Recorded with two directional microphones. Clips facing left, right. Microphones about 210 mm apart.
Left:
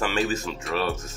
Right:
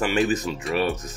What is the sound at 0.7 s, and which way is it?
Speech, centre (ahead or behind).